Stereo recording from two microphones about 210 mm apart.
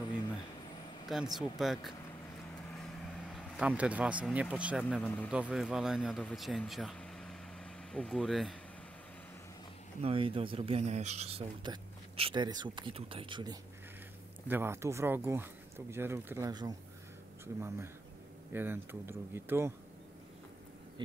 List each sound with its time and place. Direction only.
1.0 s speech: centre (ahead or behind)
3.3 s speech: 5° right (ahead or behind)
4.8 s speech: 5° left (ahead or behind)
10.0 s speech: 25° right (ahead or behind)
18.5 s speech: 10° right (ahead or behind)